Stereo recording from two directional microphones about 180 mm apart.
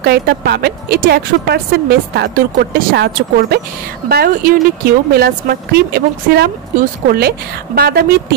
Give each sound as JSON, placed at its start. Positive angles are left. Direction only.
{"t": 0.0, "sound": "speech", "side_deg": -60}